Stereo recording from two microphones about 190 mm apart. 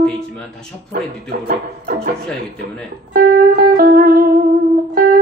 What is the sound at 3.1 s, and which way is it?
Music, 50° right (ahead or behind).